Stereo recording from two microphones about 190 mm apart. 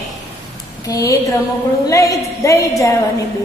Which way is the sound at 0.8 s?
20° left (ahead or behind).